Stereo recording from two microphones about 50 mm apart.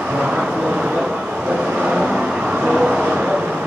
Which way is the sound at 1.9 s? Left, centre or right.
Centre.